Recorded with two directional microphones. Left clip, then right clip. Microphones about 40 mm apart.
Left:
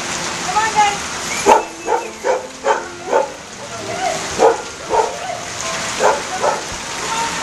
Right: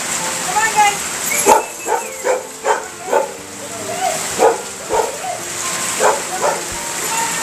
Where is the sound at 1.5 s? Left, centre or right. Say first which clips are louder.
Even; centre.